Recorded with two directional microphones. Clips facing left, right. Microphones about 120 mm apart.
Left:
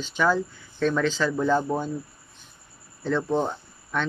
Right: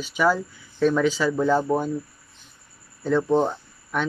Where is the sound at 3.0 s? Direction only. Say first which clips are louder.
Right 4 dB; 10° right (ahead or behind).